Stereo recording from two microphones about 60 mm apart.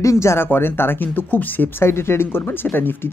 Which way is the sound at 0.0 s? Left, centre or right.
Left.